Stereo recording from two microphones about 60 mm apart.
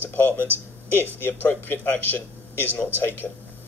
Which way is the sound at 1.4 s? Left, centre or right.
Left.